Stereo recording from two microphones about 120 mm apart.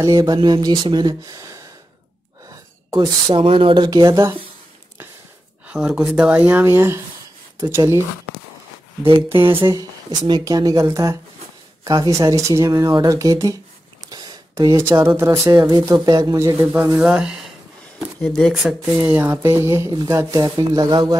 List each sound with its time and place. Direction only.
0.0 s speech: 35° right (ahead or behind)
2.4 s gasp: 25° right (ahead or behind)
3.3 s speech: 50° right (ahead or behind); by 4.4 s 25° right (ahead or behind)
5.7 s speech: 10° right (ahead or behind); by 8.0 s 30° right (ahead or behind)
9.7 s speech: 35° right (ahead or behind)
17.0 s speech: 5° right (ahead or behind)
18.2 s speech: 5° left (ahead or behind)
19.0 s speech: 20° right (ahead or behind)
19.9 s speech: 30° right (ahead or behind)